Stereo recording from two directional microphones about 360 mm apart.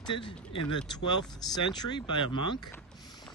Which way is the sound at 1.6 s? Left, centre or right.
Centre.